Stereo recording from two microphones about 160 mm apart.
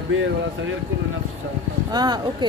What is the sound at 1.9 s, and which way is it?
Speech, 25° right (ahead or behind).